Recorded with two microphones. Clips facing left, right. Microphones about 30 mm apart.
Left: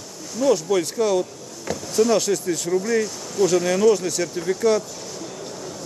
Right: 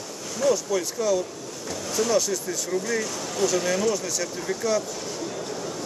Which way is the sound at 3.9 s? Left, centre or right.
Left.